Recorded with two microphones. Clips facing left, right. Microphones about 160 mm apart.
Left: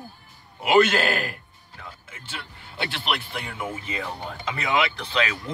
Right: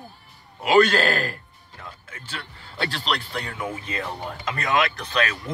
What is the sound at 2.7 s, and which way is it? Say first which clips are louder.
Speech: right 2 dB; 15° left (ahead or behind).